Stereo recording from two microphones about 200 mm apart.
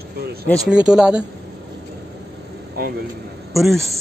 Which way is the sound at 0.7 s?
5° right (ahead or behind).